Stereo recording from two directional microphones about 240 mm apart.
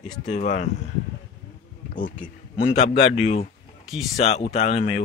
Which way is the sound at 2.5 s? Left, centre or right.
Left.